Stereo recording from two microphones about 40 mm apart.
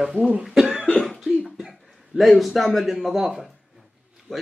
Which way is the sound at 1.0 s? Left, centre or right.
Centre.